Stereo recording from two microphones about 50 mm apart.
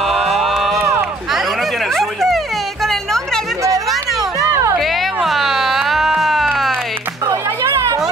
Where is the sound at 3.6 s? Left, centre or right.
Right.